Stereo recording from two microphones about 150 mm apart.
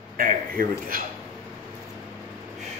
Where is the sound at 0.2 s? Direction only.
65° right (ahead or behind).